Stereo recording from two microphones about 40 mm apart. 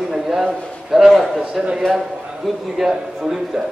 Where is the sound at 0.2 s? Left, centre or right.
Centre.